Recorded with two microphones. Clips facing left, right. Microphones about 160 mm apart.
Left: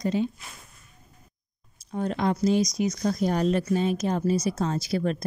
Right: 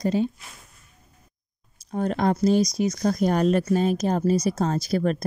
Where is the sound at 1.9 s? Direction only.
45° right (ahead or behind).